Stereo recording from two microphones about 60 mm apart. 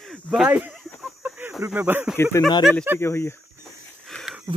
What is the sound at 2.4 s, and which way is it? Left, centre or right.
Speech, left.